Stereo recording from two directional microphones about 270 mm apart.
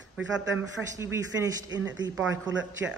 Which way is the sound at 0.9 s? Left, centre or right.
Centre.